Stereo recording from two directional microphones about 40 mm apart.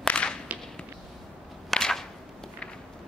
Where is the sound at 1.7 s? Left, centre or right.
Centre.